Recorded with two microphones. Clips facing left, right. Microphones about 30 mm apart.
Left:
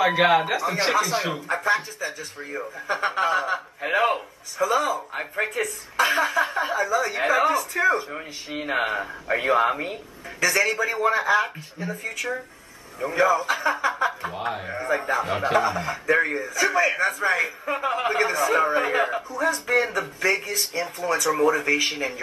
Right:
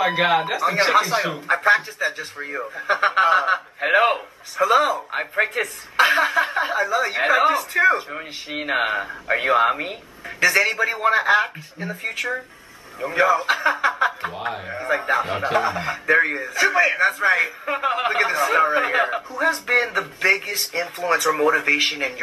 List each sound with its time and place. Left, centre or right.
0.0 s speech: centre
0.6 s a man's voice: right
1.5 s a man's voice: right
14.3 s a man's voice: centre; by 17.3 s right
17.3 s a man's voice: right